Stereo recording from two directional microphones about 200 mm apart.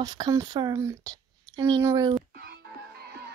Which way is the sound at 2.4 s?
55° right (ahead or behind).